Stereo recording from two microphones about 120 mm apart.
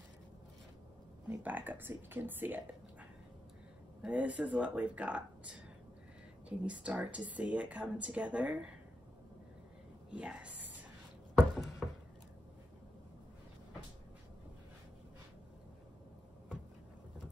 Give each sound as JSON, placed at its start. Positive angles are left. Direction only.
{"t": 1.3, "sound": "speech", "side_deg": -15}
{"t": 6.6, "sound": "speech", "side_deg": -10}
{"t": 10.1, "sound": "speech", "side_deg": -10}
{"t": 11.3, "sound": "a sound", "side_deg": 0}